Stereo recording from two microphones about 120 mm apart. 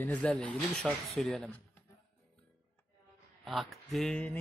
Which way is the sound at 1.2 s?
10° left (ahead or behind).